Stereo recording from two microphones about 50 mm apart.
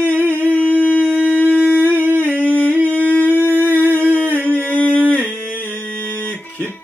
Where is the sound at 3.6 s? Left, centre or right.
Right.